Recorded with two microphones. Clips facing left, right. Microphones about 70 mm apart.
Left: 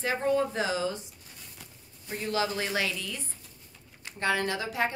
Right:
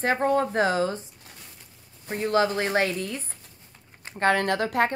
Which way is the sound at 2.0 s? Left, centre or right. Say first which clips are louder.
Right 7 dB; right.